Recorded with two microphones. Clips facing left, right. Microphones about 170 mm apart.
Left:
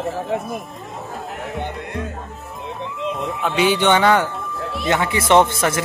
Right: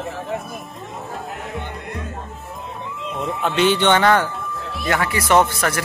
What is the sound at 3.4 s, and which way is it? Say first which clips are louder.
Speech: even; 10° left (ahead or behind).